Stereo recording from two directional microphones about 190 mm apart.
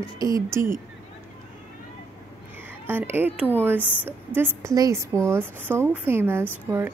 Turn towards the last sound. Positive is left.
turn(degrees=-10)  # may be behind; listen again after turning